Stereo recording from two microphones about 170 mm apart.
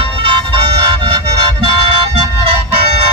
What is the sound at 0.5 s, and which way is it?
Vehicle, 35° right (ahead or behind).